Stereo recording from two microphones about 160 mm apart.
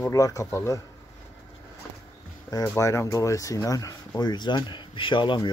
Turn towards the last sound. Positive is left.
turn(degrees=30)  # may be behind; listen again after turning